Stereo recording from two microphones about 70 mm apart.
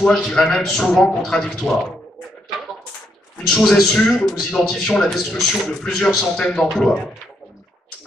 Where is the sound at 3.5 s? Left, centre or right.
Centre.